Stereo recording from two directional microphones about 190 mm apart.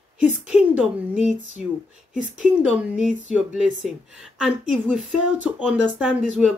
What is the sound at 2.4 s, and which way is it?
Speech, 5° right (ahead or behind).